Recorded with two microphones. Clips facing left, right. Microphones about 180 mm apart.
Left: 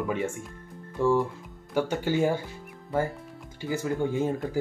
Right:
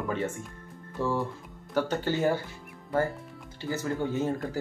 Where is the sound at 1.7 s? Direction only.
10° left (ahead or behind).